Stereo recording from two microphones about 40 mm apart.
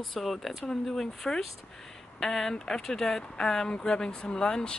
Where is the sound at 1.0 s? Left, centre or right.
Centre.